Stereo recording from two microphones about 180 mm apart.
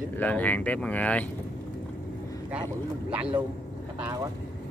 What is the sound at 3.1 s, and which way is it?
Speech, 5° right (ahead or behind).